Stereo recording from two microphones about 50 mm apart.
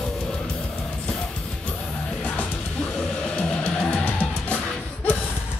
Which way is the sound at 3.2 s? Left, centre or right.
Left.